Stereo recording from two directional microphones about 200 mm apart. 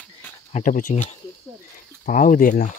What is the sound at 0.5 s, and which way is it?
Speech, 40° left (ahead or behind).